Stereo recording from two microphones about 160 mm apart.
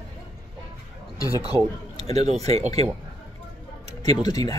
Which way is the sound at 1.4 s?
40° right (ahead or behind).